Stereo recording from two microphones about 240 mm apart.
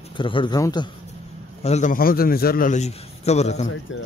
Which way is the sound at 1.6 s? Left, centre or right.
Left.